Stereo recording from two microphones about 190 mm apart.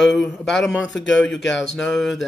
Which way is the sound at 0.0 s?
Centre (ahead or behind).